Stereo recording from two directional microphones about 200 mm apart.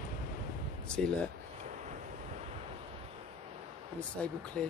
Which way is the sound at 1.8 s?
35° right (ahead or behind).